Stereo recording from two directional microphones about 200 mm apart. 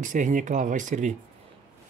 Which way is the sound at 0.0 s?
40° right (ahead or behind).